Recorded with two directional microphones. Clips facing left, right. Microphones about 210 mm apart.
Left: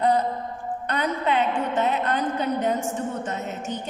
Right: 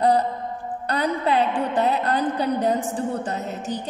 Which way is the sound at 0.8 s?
35° right (ahead or behind).